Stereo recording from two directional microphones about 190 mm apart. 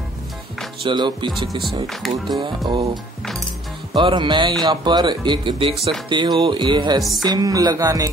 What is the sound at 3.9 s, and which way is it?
Speech, 25° right (ahead or behind).